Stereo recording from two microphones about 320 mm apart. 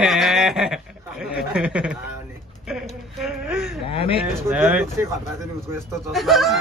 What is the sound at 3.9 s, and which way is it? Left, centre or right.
Speech, centre.